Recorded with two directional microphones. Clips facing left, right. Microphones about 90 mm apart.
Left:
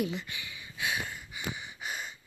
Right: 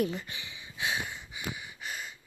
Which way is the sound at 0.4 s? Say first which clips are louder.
Even; 25° right (ahead or behind).